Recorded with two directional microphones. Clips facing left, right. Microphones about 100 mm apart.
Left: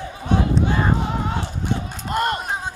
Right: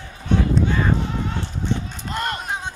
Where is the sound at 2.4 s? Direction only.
5° left (ahead or behind).